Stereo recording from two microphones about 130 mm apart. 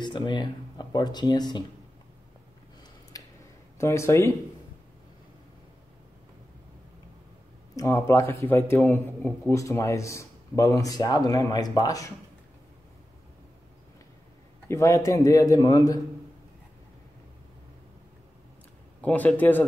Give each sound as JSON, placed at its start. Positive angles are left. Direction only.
{"t": 0.0, "sound": "speech", "side_deg": 35}
{"t": 3.1, "sound": "a sound", "side_deg": 25}
{"t": 3.7, "sound": "a man's voice", "side_deg": 20}
{"t": 7.7, "sound": "a man's voice", "side_deg": 25}
{"t": 14.7, "sound": "a man's voice", "side_deg": 25}
{"t": 18.9, "sound": "speech", "side_deg": 10}